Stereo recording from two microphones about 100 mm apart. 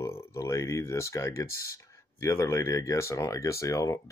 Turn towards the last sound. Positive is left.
turn(degrees=30)  # may be behind; listen again after turning